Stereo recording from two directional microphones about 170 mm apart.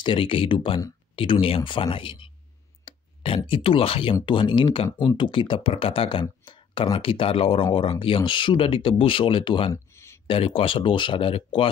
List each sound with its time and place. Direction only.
0.0 s speech: 30° left (ahead or behind)